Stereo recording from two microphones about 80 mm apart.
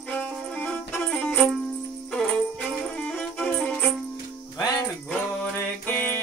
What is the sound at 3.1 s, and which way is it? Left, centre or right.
Music, centre.